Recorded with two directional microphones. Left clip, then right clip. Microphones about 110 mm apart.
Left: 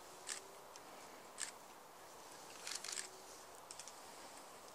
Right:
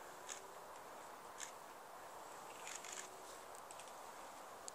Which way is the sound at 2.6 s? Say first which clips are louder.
Left 6 dB; 30° left (ahead or behind).